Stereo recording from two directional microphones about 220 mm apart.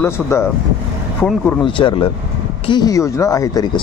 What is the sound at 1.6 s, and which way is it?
A man's voice, 20° left (ahead or behind).